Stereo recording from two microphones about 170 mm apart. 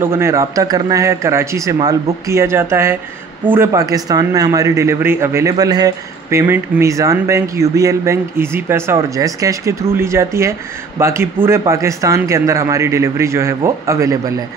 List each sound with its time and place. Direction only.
0.0 s speech: 15° right (ahead or behind)